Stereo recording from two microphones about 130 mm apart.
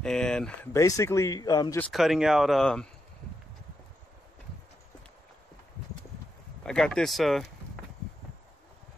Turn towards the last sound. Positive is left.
turn(degrees=0)  # may be behind; listen again after turning